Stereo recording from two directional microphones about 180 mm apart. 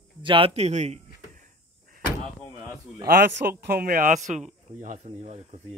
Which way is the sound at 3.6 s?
55° right (ahead or behind).